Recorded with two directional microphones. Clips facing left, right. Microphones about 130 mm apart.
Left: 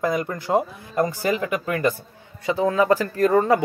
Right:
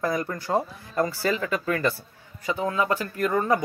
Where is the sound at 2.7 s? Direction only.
40° left (ahead or behind).